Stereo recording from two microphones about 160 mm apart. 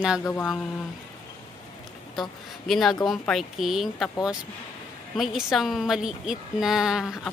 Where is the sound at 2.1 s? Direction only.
Centre (ahead or behind).